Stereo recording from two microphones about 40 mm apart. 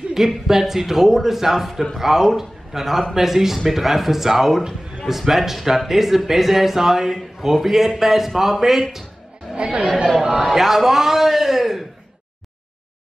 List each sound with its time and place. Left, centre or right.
0.5 s speech: centre
9.6 s speech: right
10.4 s speech: centre